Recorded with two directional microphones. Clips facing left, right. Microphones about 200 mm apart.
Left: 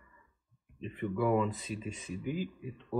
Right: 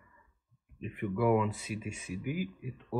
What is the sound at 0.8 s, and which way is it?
Speech, 5° right (ahead or behind).